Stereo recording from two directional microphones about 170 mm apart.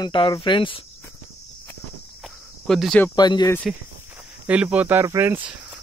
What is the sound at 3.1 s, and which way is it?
Speech, 25° left (ahead or behind).